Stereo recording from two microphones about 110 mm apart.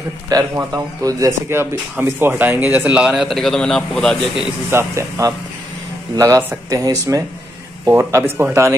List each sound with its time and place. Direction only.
0.3 s speech: 35° right (ahead or behind); by 4.5 s 5° left (ahead or behind)
4.6 s speech: 25° right (ahead or behind)